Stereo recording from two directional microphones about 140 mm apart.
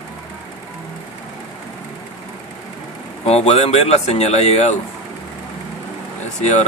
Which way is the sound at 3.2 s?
50° left (ahead or behind).